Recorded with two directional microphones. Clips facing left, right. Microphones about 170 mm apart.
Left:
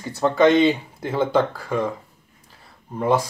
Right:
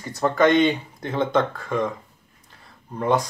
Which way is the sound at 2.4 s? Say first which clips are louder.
Left 1 dB; 5° left (ahead or behind).